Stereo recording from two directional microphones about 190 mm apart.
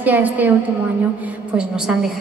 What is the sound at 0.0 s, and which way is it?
Speech, 10° right (ahead or behind).